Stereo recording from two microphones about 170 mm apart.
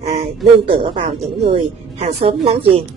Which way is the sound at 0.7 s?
30° right (ahead or behind).